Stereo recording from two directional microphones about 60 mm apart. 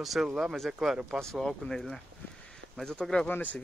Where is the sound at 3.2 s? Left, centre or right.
Left.